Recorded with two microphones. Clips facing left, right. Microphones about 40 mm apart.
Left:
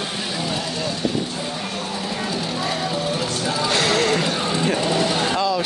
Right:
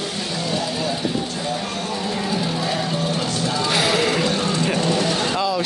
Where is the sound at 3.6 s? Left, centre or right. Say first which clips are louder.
Even; centre.